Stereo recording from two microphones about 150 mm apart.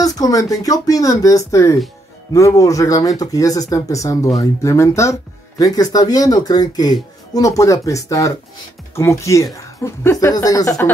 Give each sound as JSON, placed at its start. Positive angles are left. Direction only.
{"t": 0.0, "sound": "speech", "side_deg": 25}